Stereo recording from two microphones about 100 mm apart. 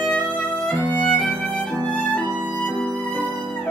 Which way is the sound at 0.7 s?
20° left (ahead or behind).